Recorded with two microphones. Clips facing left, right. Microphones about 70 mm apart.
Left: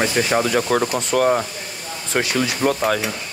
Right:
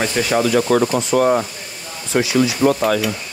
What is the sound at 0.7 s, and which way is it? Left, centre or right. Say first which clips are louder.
Speech: right 4 dB; right.